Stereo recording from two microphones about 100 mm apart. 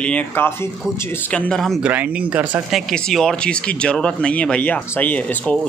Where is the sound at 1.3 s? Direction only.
5° left (ahead or behind).